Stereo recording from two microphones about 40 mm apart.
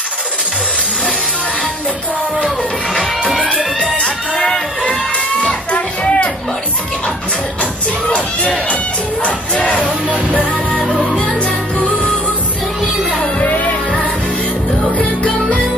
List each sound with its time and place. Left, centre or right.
4.0 s a sound: centre
5.4 s music: left
9.2 s speech: left
10.9 s music: centre
13.4 s music: left